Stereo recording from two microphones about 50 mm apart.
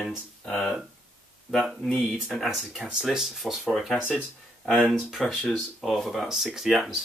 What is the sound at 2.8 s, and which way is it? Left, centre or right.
Speech, centre.